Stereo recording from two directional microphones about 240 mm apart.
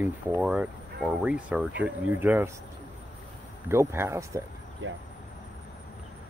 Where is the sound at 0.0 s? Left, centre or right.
Centre.